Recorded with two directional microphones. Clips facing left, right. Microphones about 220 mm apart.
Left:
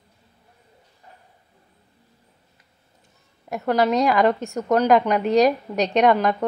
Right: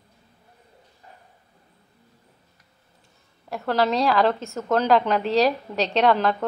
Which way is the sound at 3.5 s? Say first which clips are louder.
Left 3 dB; 15° left (ahead or behind).